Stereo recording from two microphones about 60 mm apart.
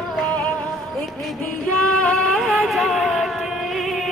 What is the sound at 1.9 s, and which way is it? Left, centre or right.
Music, centre.